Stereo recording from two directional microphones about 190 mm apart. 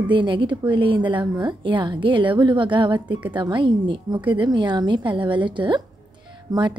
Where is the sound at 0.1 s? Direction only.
25° right (ahead or behind).